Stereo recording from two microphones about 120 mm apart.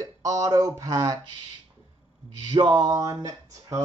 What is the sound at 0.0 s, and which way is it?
Speech, 30° right (ahead or behind).